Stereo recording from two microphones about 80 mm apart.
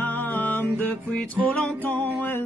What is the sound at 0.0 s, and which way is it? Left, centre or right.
Music, left.